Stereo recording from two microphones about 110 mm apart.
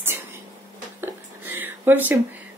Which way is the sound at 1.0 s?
20° right (ahead or behind).